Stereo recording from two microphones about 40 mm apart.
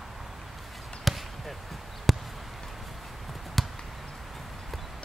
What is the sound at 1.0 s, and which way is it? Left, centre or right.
Basketball bounce, centre.